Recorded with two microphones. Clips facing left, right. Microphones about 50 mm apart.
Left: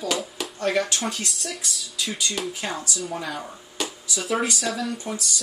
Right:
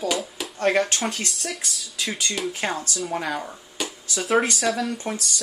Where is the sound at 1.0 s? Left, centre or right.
Centre.